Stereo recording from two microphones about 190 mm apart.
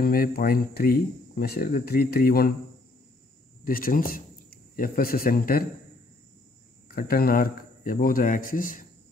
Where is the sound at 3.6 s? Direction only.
50° left (ahead or behind).